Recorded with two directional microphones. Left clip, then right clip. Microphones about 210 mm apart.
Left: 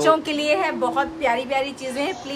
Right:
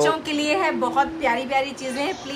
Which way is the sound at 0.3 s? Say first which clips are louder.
Left 1 dB; 15° left (ahead or behind).